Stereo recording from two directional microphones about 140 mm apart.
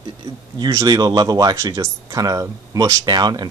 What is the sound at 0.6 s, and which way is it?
Speech, 25° right (ahead or behind).